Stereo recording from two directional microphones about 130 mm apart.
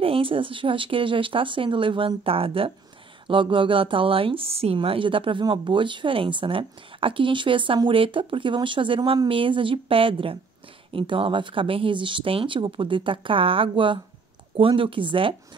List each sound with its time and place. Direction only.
0.0 s a woman's voice: 45° right (ahead or behind)